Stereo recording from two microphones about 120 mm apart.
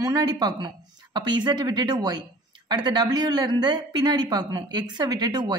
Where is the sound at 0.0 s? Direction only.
30° right (ahead or behind).